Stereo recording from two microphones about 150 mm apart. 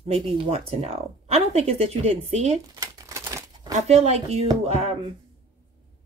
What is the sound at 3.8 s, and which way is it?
Speech, 45° right (ahead or behind).